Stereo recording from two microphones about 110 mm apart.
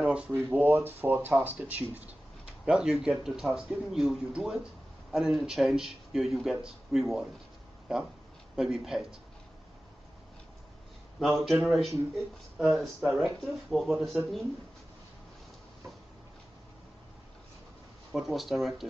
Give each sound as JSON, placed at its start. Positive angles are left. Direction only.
{"t": 0.0, "sound": "a sound", "side_deg": -10}
{"t": 0.5, "sound": "speech", "side_deg": -20}
{"t": 11.1, "sound": "speech", "side_deg": 0}
{"t": 18.1, "sound": "speech", "side_deg": 0}